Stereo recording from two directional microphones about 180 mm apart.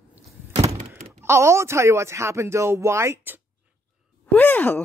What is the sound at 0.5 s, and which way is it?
Thunk, 35° right (ahead or behind).